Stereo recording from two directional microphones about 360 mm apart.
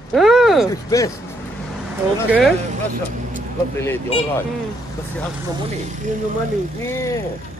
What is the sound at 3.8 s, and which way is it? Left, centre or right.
Speech, centre.